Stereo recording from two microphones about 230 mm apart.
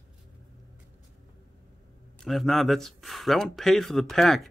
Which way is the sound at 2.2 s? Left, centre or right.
Centre.